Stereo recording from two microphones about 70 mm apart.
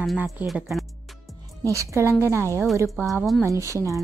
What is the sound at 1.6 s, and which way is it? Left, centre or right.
A woman's voice, right.